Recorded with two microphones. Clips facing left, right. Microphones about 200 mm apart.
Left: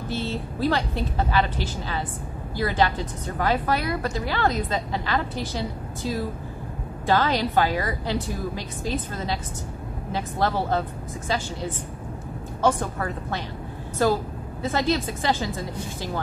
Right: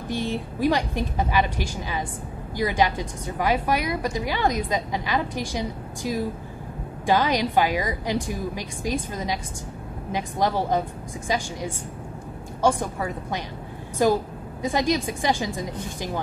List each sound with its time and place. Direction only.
0.1 s a woman's voice: 15° right (ahead or behind)